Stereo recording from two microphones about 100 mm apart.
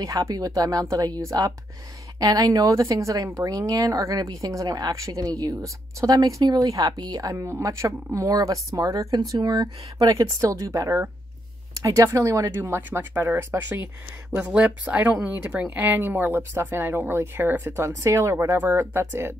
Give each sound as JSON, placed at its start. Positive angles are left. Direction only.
{"t": 0.0, "sound": "a woman's voice", "side_deg": -35}